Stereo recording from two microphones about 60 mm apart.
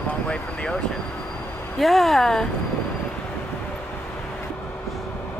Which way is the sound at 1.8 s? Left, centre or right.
Centre.